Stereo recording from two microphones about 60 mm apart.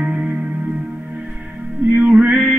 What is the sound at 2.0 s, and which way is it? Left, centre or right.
Male singing, right.